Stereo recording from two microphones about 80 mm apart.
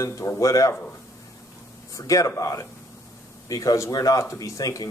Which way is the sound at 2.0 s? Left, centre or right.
Left.